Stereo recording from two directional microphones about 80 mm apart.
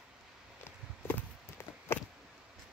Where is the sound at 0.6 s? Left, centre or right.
Left.